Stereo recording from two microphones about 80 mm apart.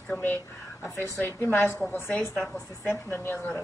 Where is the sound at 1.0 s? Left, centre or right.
Left.